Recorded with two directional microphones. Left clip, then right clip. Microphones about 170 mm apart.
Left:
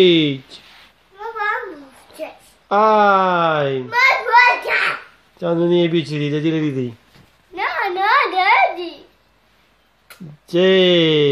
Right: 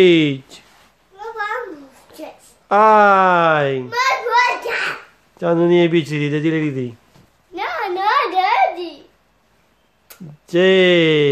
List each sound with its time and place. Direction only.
0.0 s speech: 5° right (ahead or behind)
2.7 s speech: 5° right (ahead or behind)
3.9 s a sound: 40° right (ahead or behind)
5.4 s speech: 10° right (ahead or behind); by 6.9 s 5° left (ahead or behind)
7.5 s a sound: 50° right (ahead or behind)
10.4 s speech: centre (ahead or behind)